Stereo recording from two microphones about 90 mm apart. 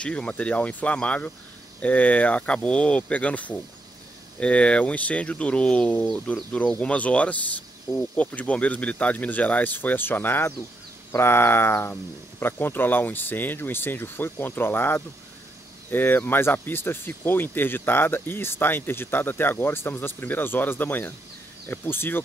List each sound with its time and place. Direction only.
0.0 s speech: 15° left (ahead or behind)